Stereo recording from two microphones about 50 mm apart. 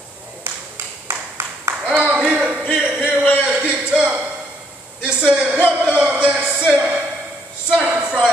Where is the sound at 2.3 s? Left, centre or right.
Right.